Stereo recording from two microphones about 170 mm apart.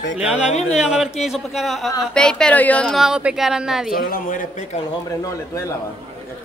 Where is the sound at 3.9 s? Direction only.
55° left (ahead or behind).